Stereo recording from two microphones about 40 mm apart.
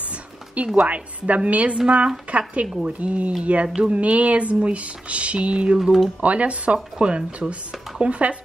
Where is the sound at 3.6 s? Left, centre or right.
Right.